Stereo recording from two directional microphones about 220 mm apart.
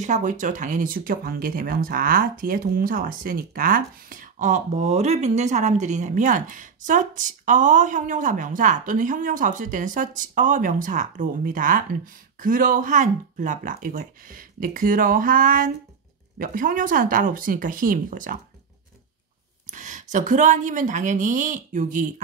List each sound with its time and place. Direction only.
0.0 s speech: 35° right (ahead or behind)
19.7 s speech: 35° right (ahead or behind)